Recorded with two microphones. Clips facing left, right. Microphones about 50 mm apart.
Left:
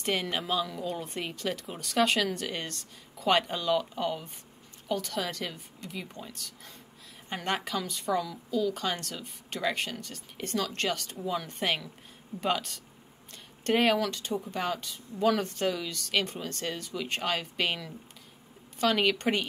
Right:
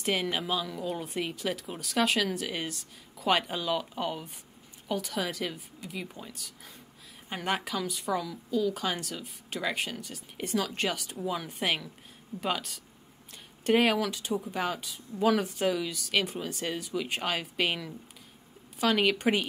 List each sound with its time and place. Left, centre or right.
0.0 s a woman's voice: centre